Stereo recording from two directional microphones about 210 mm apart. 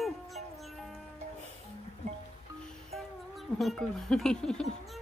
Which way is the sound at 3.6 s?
Centre (ahead or behind).